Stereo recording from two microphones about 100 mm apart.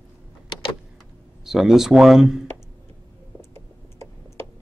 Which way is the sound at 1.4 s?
5° right (ahead or behind).